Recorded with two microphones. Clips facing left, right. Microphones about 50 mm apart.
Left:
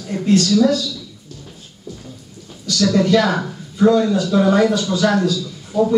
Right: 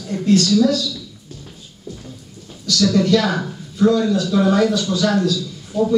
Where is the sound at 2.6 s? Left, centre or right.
Left.